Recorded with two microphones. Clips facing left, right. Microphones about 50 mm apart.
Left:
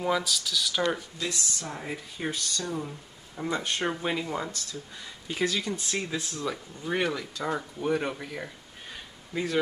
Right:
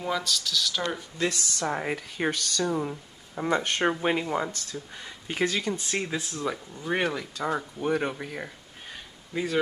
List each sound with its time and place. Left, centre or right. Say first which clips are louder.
0.0 s speech: left 1 dB; centre
1.2 s speech: right 5 dB; right
2.6 s speech: right 6 dB; right
3.4 s speech: right 4 dB; right
6.0 s speech: right 2 dB; right
9.3 s speech: right 1 dB; centre